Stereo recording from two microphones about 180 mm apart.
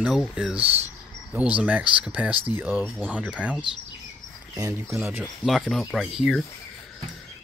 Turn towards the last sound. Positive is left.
turn(degrees=0)  # may be behind; listen again after turning